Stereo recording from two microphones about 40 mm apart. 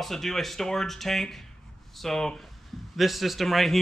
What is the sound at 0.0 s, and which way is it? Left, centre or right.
Speech, centre.